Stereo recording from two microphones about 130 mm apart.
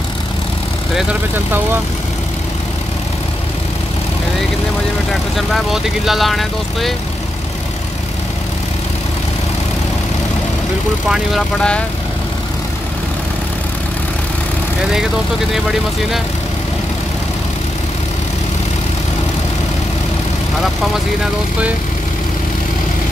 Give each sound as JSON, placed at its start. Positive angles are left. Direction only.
{"t": 5.5, "sound": "speech", "side_deg": 0}
{"t": 11.1, "sound": "speech", "side_deg": 5}